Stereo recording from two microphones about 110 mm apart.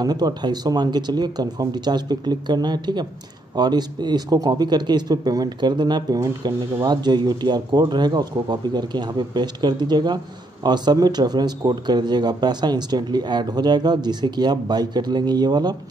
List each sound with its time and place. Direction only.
0.0 s speech: 40° right (ahead or behind)